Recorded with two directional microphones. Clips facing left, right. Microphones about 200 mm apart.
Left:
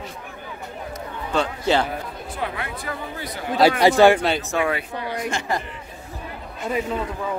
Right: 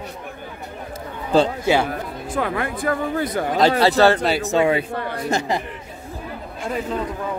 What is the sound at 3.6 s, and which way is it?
Speech, 15° left (ahead or behind).